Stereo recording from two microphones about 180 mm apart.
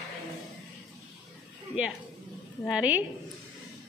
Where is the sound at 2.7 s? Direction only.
5° right (ahead or behind).